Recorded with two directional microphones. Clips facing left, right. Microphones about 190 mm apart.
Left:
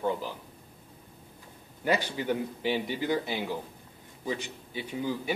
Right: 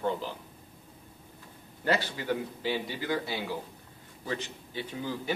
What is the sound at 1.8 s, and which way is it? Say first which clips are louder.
A man's voice: left 1 dB; 15° left (ahead or behind).